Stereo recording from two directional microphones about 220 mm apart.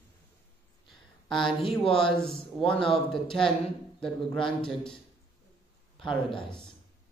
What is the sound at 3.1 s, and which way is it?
Speech, 5° left (ahead or behind).